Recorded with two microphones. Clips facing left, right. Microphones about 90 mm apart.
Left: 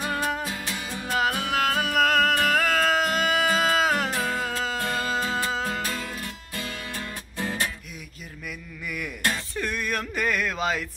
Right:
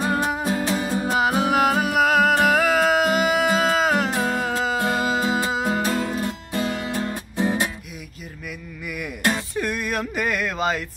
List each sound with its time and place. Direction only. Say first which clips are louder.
0.0 s music: right 5 dB; 25° right (ahead or behind)
1.1 s music: right 4 dB; 20° right (ahead or behind); by 4.1 s centre (ahead or behind)
4.1 s music: right 4 dB; 15° right (ahead or behind)
9.6 s a sound: right 4 dB; 5° right (ahead or behind)